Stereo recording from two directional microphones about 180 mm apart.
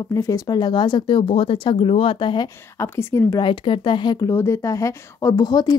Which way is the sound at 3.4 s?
30° left (ahead or behind).